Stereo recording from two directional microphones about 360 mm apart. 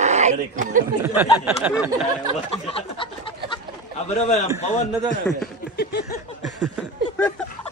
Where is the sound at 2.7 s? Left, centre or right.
Centre.